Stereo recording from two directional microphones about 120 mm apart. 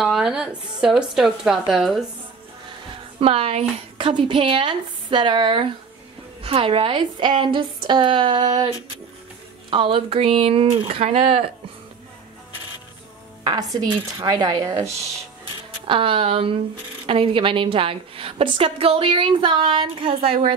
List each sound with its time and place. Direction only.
0.0 s a sound: 5° right (ahead or behind)
0.7 s a woman's voice: 5° right (ahead or behind)
3.2 s a woman's voice: 55° right (ahead or behind)
13.4 s speech: 35° right (ahead or behind)
15.9 s a woman's voice: 50° right (ahead or behind)